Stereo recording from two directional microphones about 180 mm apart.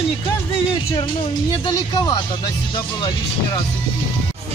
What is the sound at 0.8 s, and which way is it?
Speech, 15° left (ahead or behind).